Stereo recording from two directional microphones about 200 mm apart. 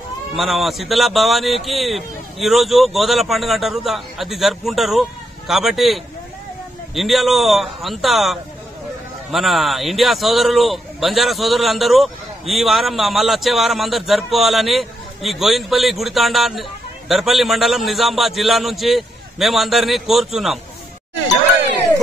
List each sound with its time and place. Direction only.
0.4 s a man's voice: centre (ahead or behind)
7.0 s a man's voice: centre (ahead or behind)